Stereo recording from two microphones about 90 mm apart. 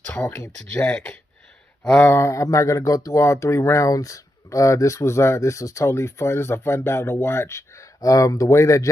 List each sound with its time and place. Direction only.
0.0 s speech: 20° left (ahead or behind)
0.7 s speech: 10° left (ahead or behind)
1.8 s a sound: 10° left (ahead or behind)
2.0 s speech: 30° left (ahead or behind)